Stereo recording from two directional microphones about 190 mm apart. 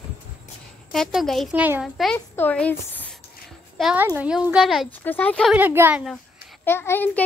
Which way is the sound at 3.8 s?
5° right (ahead or behind).